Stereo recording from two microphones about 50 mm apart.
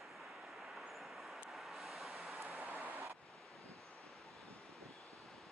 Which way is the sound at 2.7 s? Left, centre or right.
Right.